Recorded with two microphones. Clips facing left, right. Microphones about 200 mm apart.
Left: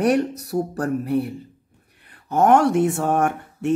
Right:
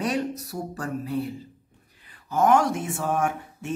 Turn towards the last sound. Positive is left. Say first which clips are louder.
# left 7 dB
turn(degrees=65)  # may be behind; listen again after turning